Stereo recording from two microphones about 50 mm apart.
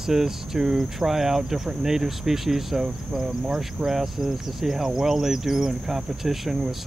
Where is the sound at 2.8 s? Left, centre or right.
Centre.